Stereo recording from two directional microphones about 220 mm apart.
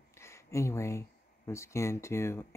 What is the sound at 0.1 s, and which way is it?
Speech, 10° left (ahead or behind).